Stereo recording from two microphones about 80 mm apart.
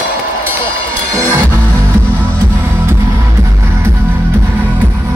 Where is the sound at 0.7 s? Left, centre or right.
Left.